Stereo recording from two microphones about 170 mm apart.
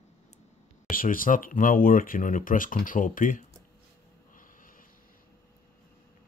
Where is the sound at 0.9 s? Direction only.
55° left (ahead or behind).